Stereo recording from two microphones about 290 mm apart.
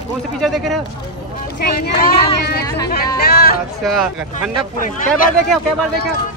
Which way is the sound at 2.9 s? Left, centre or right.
Left.